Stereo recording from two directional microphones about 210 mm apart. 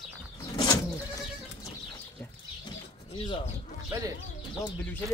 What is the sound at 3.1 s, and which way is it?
Speech, 25° left (ahead or behind).